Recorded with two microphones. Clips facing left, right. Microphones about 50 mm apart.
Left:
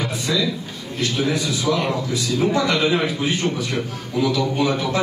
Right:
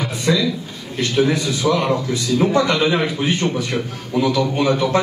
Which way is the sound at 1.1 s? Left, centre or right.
Right.